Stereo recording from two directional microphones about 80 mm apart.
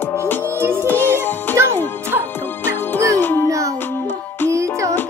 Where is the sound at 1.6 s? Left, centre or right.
Right.